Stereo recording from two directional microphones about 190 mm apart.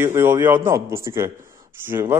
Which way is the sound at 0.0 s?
10° right (ahead or behind).